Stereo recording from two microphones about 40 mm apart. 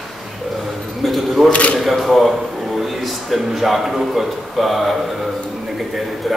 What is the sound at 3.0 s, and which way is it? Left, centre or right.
Speech, centre.